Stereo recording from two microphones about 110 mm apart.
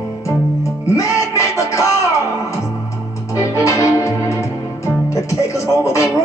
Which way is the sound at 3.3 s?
25° left (ahead or behind).